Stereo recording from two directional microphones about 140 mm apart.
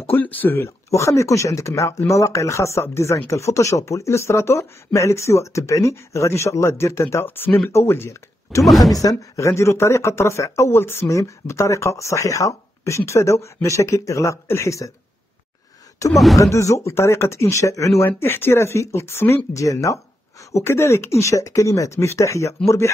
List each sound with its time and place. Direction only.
0.1 s speech: 10° left (ahead or behind)
8.6 s speech: centre (ahead or behind)
8.9 s speech: 25° left (ahead or behind)
16.1 s speech: centre (ahead or behind)
16.3 s speech: 20° left (ahead or behind)